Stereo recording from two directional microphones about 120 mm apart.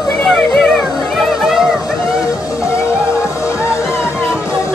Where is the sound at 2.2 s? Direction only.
25° left (ahead or behind).